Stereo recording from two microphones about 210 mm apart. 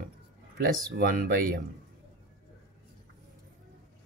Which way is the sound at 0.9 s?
45° right (ahead or behind).